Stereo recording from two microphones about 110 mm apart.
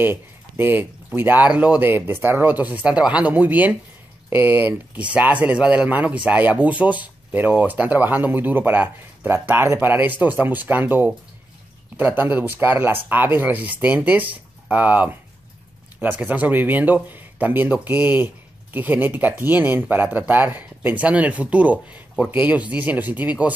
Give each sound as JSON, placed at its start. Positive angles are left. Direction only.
{"t": 0.0, "sound": "speech", "side_deg": -20}